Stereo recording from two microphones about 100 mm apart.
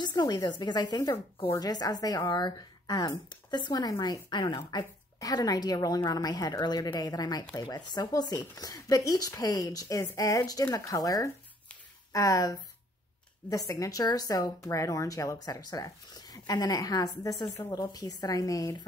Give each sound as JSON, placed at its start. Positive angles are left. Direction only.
{"t": 0.0, "sound": "speech", "side_deg": 45}
{"t": 1.1, "sound": "speech", "side_deg": 20}
{"t": 1.6, "sound": "speech", "side_deg": 40}
{"t": 4.6, "sound": "a woman's voice", "side_deg": 35}